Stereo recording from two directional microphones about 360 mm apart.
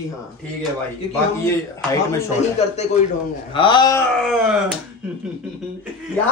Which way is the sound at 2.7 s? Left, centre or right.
Centre.